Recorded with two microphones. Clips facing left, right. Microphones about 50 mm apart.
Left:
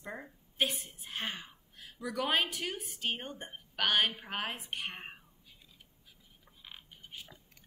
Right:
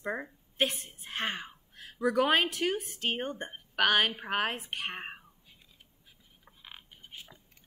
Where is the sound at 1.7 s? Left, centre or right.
Right.